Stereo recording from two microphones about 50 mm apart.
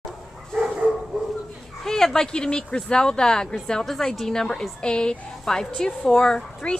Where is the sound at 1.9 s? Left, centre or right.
Centre.